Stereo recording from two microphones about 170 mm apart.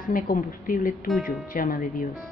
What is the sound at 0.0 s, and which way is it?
A woman's voice, 55° left (ahead or behind).